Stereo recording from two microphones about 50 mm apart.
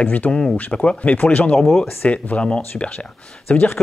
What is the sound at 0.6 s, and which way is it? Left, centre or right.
Speech, left.